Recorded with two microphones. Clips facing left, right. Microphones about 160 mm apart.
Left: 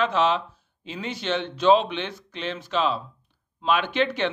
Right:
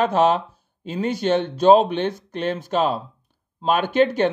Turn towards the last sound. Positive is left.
turn(degrees=-45)  # may be behind; listen again after turning